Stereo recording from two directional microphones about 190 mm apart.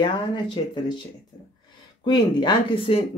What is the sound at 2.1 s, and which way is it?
Speech, 25° left (ahead or behind).